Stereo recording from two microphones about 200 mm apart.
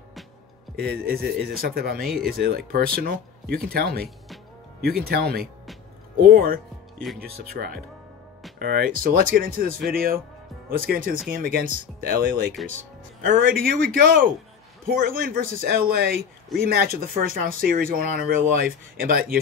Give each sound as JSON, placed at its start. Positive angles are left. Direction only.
{"t": 0.7, "sound": "speech", "side_deg": -50}